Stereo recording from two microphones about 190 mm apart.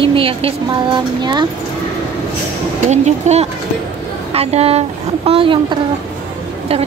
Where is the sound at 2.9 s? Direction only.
35° right (ahead or behind).